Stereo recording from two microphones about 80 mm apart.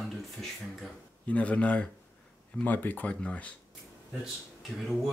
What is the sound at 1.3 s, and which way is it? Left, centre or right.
Speech, centre.